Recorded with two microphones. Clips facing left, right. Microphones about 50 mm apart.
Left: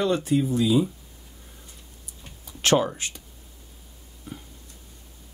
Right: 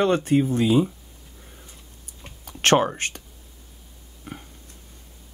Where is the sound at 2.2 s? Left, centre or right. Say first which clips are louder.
Right 4 dB; right.